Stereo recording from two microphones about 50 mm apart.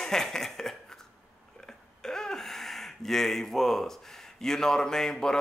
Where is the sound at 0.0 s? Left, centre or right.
Centre.